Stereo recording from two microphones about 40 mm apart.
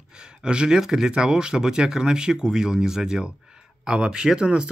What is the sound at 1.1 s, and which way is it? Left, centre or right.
Speech, right.